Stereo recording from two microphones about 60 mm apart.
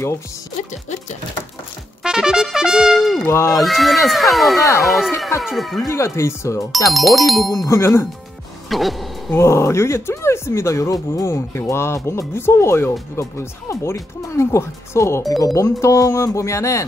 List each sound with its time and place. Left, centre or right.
2.0 s trumpet: centre
3.3 s speech: left
3.6 s speech: centre
5.9 s speech: left
6.9 s speech: centre
7.6 s speech: left
8.6 s speech: centre
9.3 s speech: left
11.3 s speech: left
15.4 s speech: left